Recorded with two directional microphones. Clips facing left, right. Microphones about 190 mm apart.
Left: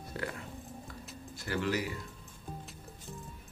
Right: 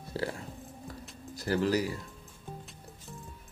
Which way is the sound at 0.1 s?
30° right (ahead or behind).